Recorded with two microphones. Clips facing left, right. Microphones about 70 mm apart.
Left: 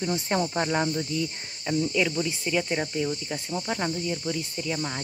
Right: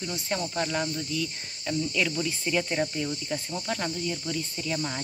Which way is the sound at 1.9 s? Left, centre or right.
Centre.